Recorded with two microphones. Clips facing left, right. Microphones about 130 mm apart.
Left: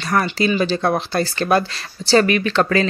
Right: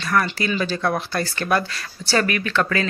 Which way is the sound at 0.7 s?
30° left (ahead or behind).